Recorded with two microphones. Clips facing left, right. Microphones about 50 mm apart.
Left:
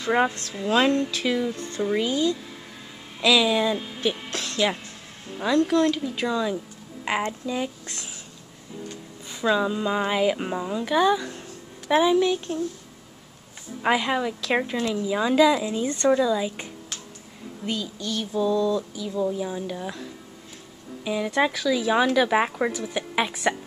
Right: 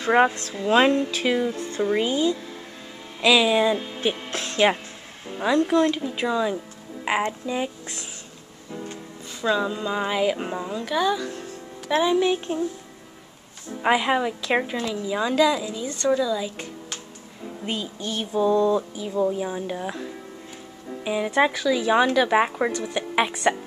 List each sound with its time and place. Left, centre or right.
0.1 s speech: centre
1.5 s speech: centre
4.3 s music: centre
5.3 s speech: centre
9.4 s speech: centre
12.2 s speech: centre
13.8 s speech: centre
15.6 s a woman's voice: left
16.1 s a woman's voice: centre
17.6 s speech: right; by 23.5 s centre